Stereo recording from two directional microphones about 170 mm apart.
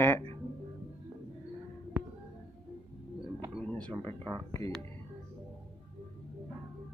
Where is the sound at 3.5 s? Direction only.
5° left (ahead or behind).